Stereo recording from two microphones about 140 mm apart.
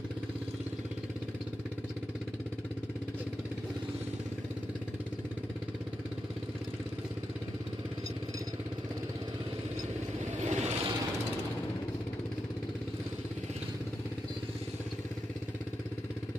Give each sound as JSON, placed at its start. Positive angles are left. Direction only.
{"t": 10.4, "sound": "vehicle", "side_deg": -55}